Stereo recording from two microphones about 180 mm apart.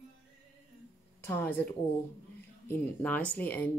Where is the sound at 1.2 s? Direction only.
15° left (ahead or behind).